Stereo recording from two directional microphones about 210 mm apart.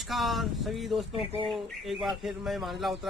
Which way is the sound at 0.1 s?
Centre (ahead or behind).